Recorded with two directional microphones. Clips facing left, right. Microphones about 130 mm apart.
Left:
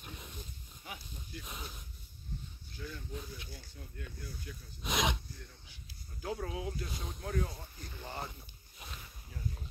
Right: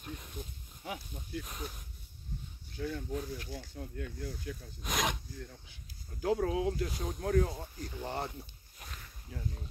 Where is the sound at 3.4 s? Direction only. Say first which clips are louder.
Right 8 dB; 90° right.